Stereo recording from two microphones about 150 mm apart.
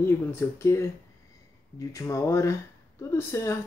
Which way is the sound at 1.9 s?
20° left (ahead or behind).